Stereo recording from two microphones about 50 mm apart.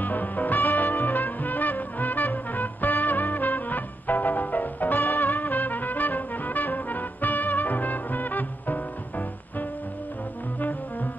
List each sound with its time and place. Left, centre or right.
0.0 s music: left